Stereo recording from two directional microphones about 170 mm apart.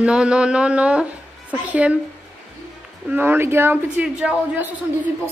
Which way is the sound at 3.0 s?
10° right (ahead or behind).